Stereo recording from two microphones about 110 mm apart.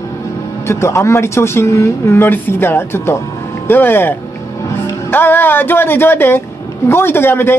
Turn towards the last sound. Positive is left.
turn(degrees=20)  # may be behind; listen again after turning